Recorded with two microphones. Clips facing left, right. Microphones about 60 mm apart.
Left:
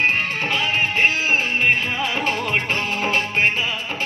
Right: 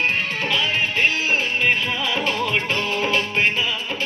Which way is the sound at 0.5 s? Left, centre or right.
Left.